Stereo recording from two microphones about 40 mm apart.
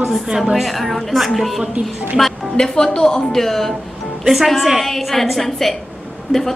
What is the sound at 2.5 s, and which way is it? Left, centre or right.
A woman's voice, centre.